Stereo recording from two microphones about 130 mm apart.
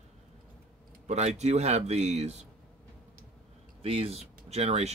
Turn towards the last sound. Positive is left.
turn(degrees=-55)  # may be behind; listen again after turning